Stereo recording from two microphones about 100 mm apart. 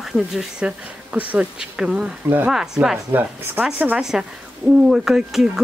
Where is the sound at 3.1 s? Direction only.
20° right (ahead or behind).